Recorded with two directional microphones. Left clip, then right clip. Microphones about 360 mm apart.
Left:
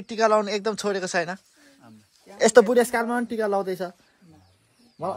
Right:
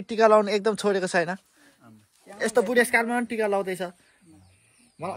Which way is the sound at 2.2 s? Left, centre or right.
Centre.